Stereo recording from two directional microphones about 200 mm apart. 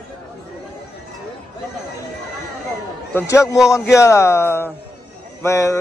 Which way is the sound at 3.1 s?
15° left (ahead or behind).